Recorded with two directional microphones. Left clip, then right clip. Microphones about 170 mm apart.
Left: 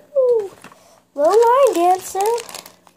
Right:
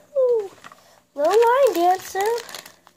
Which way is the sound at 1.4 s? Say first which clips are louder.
Left 4 dB; 20° right (ahead or behind).